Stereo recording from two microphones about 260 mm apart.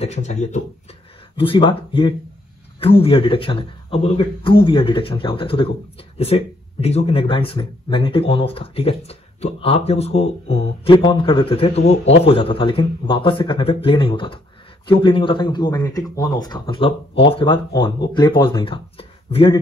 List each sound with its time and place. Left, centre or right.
0.0 s speech: left